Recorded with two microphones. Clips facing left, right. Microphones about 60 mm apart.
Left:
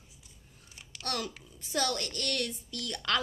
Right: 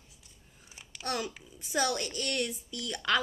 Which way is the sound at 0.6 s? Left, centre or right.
Centre.